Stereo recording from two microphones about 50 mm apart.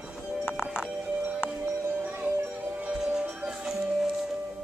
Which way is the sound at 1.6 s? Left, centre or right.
Right.